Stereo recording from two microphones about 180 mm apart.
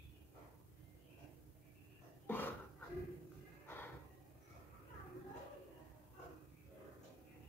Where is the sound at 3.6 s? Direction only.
10° left (ahead or behind).